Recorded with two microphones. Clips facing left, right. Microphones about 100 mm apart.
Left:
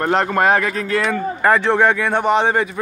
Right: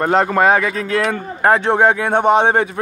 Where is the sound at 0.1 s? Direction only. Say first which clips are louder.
Right 2 dB; 35° right (ahead or behind).